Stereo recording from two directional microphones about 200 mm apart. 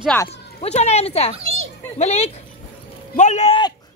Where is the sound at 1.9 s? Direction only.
35° left (ahead or behind).